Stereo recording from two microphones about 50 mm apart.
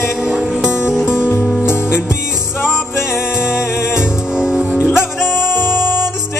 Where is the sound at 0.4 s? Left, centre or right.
Centre.